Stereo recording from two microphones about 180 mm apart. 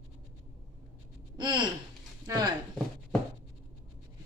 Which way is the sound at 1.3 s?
25° right (ahead or behind).